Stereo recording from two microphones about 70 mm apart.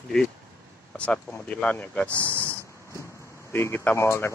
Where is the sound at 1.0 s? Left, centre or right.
Centre.